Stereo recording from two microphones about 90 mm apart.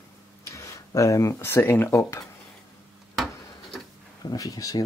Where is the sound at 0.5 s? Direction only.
35° left (ahead or behind).